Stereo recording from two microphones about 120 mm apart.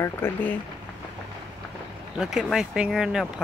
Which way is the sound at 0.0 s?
15° left (ahead or behind).